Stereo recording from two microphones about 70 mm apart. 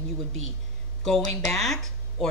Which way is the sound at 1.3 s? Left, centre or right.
Left.